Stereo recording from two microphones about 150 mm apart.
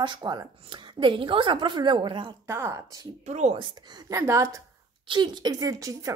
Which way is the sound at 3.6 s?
30° right (ahead or behind).